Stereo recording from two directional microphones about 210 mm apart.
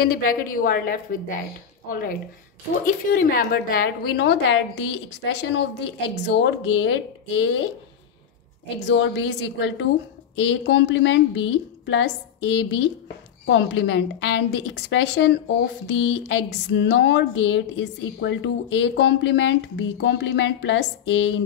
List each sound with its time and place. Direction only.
0.0 s a woman's voice: 40° left (ahead or behind); by 7.6 s 65° left (ahead or behind)
8.7 s a woman's voice: 55° left (ahead or behind)